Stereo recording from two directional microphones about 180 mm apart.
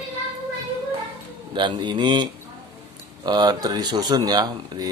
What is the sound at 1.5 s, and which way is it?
Speech, 25° right (ahead or behind).